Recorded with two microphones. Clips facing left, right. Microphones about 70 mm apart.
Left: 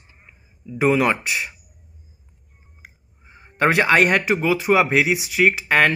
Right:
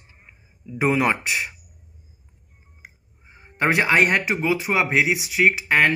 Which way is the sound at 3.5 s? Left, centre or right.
Centre.